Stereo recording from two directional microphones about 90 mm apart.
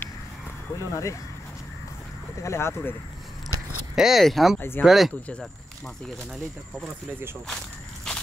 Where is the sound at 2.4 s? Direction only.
30° left (ahead or behind).